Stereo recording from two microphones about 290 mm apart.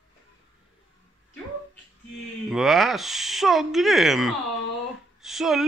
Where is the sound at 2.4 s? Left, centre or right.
Centre.